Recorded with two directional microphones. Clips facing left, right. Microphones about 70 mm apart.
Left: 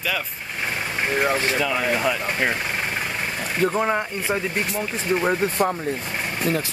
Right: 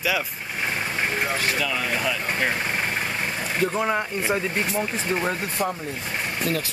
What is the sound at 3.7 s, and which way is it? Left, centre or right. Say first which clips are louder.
Speech: left 2 dB; centre.